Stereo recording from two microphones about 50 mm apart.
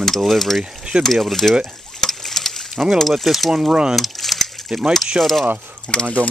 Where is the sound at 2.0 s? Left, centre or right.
Centre.